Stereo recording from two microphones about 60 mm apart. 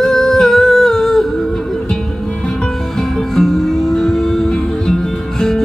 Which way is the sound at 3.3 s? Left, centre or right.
Centre.